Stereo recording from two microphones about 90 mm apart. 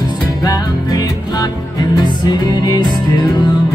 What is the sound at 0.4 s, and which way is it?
Music, 45° left (ahead or behind).